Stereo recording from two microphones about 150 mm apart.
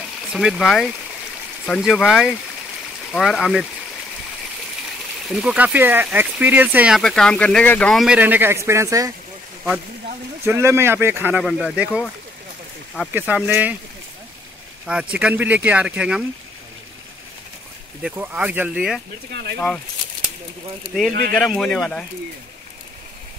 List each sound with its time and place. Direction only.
0.3 s speech: 5° right (ahead or behind)
5.3 s speech: 5° right (ahead or behind)
7.0 s speech: 5° left (ahead or behind)
8.2 s speech: 15° right (ahead or behind)
10.4 s speech: 15° right (ahead or behind)
13.1 s speech: 10° right (ahead or behind)
14.9 s speech: 5° right (ahead or behind)
18.0 s speech: 10° right (ahead or behind)
21.1 s speech: 85° right
21.4 s speech: 5° left (ahead or behind)